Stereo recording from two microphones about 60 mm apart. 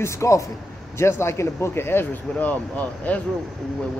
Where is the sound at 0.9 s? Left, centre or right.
Left.